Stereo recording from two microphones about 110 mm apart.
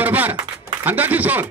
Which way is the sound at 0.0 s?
15° right (ahead or behind).